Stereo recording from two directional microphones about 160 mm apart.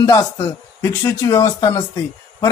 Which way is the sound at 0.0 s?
25° left (ahead or behind).